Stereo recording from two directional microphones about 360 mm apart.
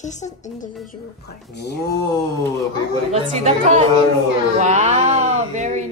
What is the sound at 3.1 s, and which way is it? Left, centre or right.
Speech, centre.